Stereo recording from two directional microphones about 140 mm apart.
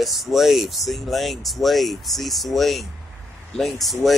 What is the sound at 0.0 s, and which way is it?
Speech, centre (ahead or behind).